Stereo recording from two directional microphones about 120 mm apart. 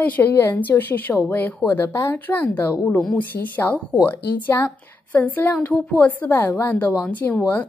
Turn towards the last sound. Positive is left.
turn(degrees=10)  # may be behind; listen again after turning